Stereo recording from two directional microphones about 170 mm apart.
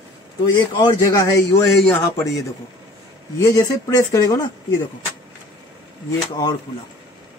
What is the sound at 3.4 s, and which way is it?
A man's voice, 20° left (ahead or behind).